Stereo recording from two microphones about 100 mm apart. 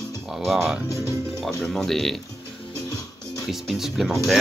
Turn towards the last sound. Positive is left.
turn(degrees=0)  # may be behind; listen again after turning